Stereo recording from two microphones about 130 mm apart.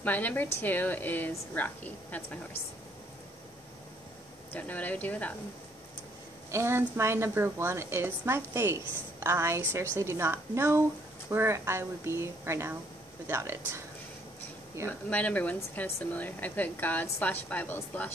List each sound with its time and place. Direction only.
0.0 s speech: 15° left (ahead or behind)
4.5 s speech: 10° left (ahead or behind)
6.5 s a woman's voice: 20° right (ahead or behind)
14.9 s speech: 10° left (ahead or behind)